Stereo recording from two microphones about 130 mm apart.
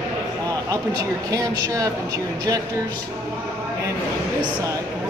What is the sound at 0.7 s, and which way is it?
Speech, 25° right (ahead or behind).